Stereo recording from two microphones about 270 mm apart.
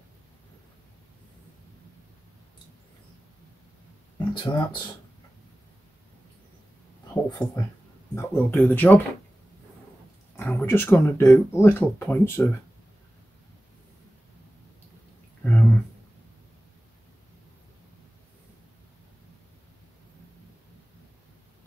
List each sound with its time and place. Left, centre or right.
4.2 s speech: centre
7.2 s speech: centre
10.3 s speech: centre
15.4 s a sound: centre